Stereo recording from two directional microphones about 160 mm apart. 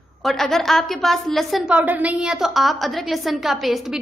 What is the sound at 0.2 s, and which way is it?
A woman's voice, centre (ahead or behind).